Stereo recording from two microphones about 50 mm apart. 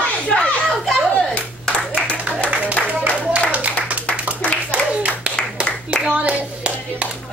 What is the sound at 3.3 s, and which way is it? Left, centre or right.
Clapping, right.